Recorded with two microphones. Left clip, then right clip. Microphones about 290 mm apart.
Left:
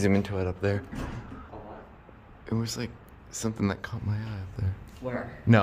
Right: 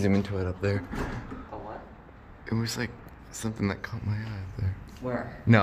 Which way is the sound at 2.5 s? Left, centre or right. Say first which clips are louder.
Right 1 dB; centre.